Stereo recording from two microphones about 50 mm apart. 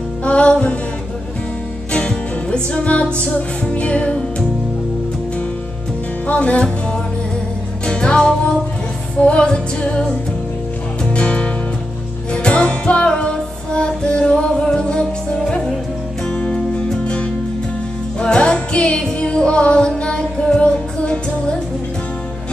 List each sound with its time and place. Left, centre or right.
0.2 s music: left
1.9 s music: centre
6.2 s music: left
11.1 s music: left